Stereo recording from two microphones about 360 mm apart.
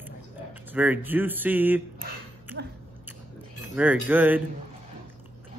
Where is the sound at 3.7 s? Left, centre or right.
Centre.